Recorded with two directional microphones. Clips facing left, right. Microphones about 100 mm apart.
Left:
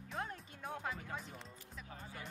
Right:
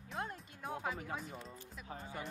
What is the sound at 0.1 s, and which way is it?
Music, centre (ahead or behind).